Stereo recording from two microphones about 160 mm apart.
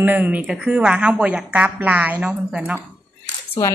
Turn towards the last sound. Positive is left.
turn(degrees=15)  # may be behind; listen again after turning